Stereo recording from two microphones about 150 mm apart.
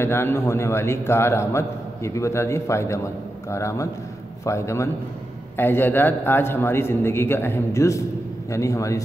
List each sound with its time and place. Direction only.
0.0 s a man's voice: 15° left (ahead or behind)